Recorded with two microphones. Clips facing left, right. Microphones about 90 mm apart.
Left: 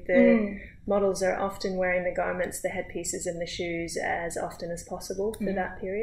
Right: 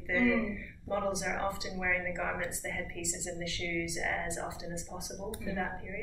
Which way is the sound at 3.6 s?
30° left (ahead or behind).